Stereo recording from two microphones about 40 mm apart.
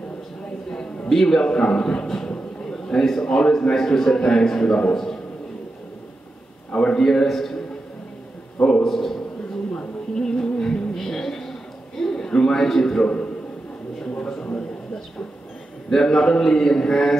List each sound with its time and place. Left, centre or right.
0.7 s a man's voice: centre
2.2 s a sound: left
3.7 s a man's voice: centre
6.7 s a man's voice: left
7.0 s a man's voice: centre
8.8 s a man's voice: centre
9.7 s a sound: centre
12.0 s a man's voice: centre
13.0 s a sound: left
15.9 s a man's voice: centre